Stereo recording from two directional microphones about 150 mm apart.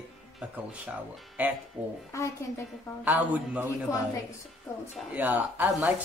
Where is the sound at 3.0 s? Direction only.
10° right (ahead or behind).